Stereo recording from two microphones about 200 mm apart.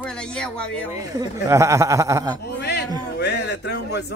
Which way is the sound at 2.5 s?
55° left (ahead or behind).